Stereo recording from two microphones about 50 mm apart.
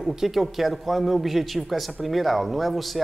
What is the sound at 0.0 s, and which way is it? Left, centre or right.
Speech, centre.